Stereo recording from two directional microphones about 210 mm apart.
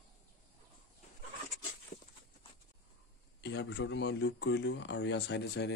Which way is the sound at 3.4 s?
55° left (ahead or behind).